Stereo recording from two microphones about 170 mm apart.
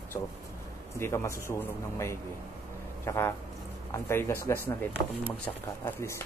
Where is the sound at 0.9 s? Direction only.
15° left (ahead or behind).